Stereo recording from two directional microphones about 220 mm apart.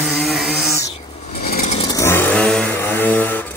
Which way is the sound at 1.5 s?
35° left (ahead or behind).